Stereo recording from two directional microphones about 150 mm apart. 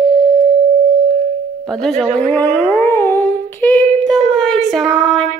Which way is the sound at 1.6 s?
Centre (ahead or behind).